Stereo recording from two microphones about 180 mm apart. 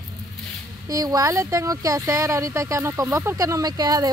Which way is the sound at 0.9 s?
20° right (ahead or behind).